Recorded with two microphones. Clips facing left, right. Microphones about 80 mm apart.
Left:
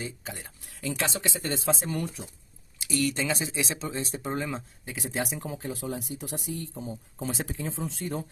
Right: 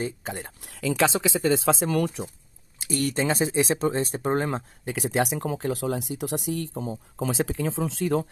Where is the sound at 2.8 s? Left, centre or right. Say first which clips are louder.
Right 3 dB; right.